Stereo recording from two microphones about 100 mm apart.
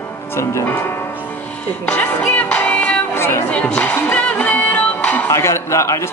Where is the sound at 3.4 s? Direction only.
15° left (ahead or behind).